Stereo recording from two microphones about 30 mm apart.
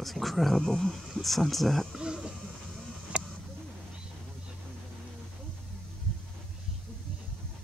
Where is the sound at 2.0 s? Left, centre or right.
Right.